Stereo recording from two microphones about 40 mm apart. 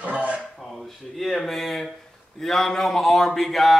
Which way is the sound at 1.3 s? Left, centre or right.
Centre.